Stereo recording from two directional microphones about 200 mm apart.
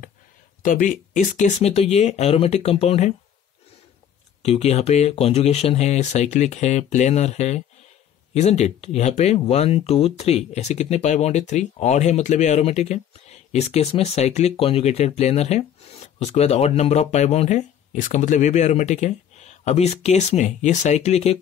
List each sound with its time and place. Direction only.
0.6 s speech: 40° left (ahead or behind)
4.4 s speech: 30° left (ahead or behind)